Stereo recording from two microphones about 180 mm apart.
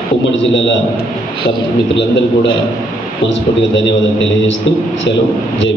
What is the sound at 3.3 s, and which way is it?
A man's voice, 90° left.